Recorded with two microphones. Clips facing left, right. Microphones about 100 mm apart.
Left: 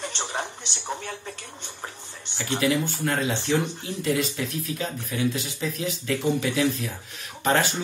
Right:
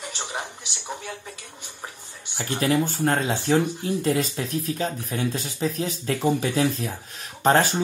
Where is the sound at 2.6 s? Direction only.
40° right (ahead or behind).